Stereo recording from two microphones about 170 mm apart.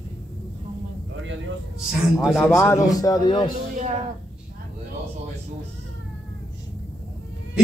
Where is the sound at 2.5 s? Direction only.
15° left (ahead or behind).